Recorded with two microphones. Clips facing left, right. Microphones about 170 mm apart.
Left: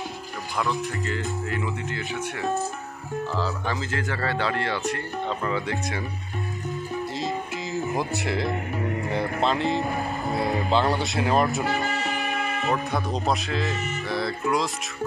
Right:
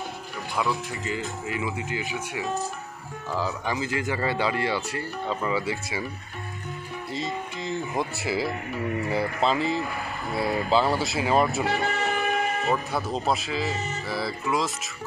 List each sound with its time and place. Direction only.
0.6 s speech: 5° right (ahead or behind)
7.2 s music: centre (ahead or behind)
9.1 s speech: 5° right (ahead or behind)
11.6 s music: 65° right (ahead or behind)
12.1 s music: 40° right (ahead or behind)
12.6 s speech: centre (ahead or behind)